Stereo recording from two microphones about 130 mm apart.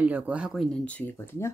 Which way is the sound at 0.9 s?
15° left (ahead or behind).